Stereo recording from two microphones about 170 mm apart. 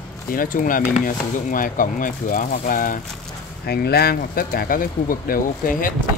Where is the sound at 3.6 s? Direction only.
70° left (ahead or behind).